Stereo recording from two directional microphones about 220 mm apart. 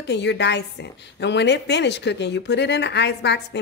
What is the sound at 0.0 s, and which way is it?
A woman's voice, 50° left (ahead or behind).